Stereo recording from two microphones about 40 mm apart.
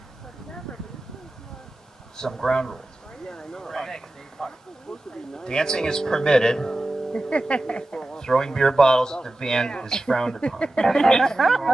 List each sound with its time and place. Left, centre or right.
2.1 s speech: centre
3.3 s a sound: centre
5.3 s speech: centre
11.3 s speech: centre